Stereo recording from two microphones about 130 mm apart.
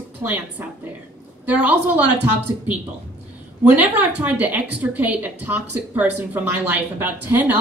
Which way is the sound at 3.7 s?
10° right (ahead or behind).